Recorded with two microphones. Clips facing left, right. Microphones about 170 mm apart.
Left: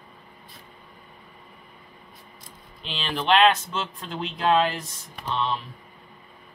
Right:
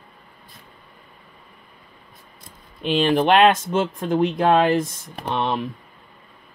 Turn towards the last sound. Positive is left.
turn(degrees=-60)  # may be behind; listen again after turning